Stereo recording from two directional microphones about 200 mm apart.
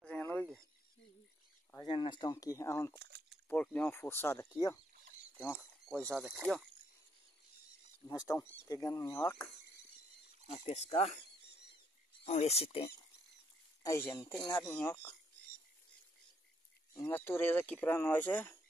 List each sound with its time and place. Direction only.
0.0 s a sound: 5° left (ahead or behind)
1.9 s speech: 25° left (ahead or behind)
3.0 s a sound: 55° right (ahead or behind)
3.4 s speech: 10° left (ahead or behind)
5.6 s speech: centre (ahead or behind)
8.1 s speech: 15° left (ahead or behind)
10.7 s speech: 30° left (ahead or behind)
12.3 s speech: 30° left (ahead or behind)
13.8 s speech: 15° left (ahead or behind)
16.9 s speech: 10° left (ahead or behind)